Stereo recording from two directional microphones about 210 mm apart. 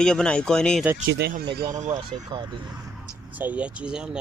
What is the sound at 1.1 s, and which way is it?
Speech, 50° right (ahead or behind).